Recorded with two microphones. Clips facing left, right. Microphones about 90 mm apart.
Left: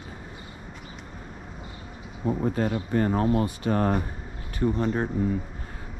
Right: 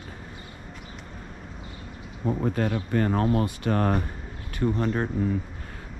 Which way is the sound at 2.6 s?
60° right (ahead or behind).